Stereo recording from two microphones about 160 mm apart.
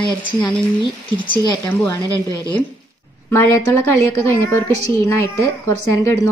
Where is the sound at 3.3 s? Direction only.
15° left (ahead or behind).